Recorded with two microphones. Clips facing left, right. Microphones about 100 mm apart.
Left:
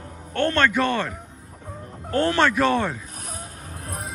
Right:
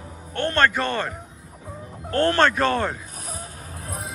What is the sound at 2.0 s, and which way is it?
Speech, 10° left (ahead or behind).